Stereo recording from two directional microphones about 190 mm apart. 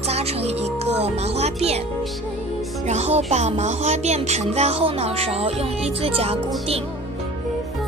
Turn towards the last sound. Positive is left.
turn(degrees=-30)  # may be behind; listen again after turning